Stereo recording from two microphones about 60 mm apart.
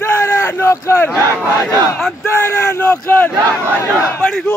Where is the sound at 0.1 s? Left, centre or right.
Left.